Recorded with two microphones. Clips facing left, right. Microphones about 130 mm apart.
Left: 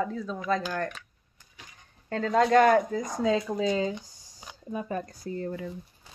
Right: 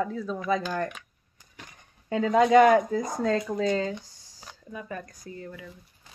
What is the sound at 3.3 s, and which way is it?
Speech, 10° left (ahead or behind).